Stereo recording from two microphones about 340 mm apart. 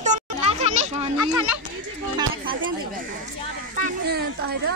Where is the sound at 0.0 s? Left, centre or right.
Centre.